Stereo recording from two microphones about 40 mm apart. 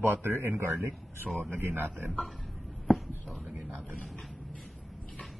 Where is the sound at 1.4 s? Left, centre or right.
Right.